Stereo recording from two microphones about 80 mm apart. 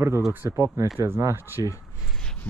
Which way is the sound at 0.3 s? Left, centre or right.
Right.